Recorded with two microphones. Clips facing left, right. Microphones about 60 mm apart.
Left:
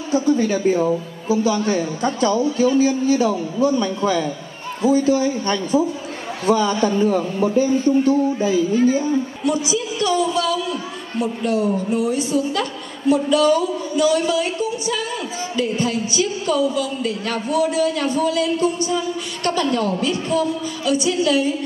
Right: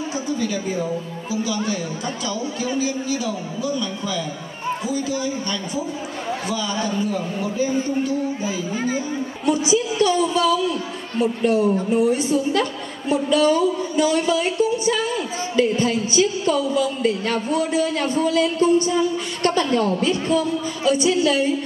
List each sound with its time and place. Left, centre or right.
0.3 s a man's voice: left
2.4 s speech: right
2.8 s a man's voice: left
8.5 s a woman's voice: right